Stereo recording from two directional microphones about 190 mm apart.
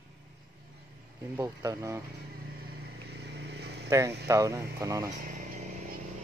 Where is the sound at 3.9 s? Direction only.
15° right (ahead or behind).